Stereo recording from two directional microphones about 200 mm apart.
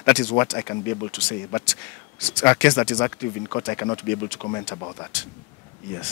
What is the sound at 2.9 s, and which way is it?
Speech, 20° left (ahead or behind).